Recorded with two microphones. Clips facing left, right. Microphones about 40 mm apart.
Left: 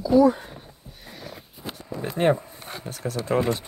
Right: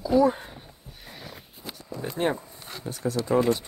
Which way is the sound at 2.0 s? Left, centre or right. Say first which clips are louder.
Left 5 dB; left.